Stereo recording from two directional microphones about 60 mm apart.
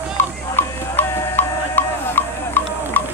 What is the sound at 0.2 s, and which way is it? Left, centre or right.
Music, left.